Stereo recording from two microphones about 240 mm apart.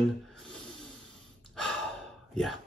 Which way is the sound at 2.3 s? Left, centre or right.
Centre.